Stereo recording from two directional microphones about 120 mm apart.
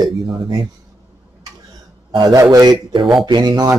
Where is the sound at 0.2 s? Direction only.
45° right (ahead or behind).